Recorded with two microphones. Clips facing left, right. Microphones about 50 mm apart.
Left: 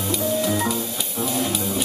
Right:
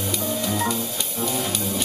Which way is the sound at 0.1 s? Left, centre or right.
Centre.